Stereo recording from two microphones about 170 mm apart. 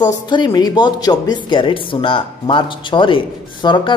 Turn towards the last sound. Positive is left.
turn(degrees=25)  # may be behind; listen again after turning